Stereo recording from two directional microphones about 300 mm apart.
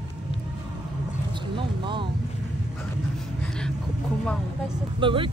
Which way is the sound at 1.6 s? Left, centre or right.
Centre.